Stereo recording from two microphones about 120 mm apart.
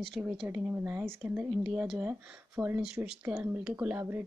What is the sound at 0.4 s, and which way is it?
Speech, 10° right (ahead or behind).